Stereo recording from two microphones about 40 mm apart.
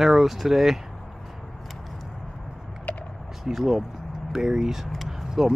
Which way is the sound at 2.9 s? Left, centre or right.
Left.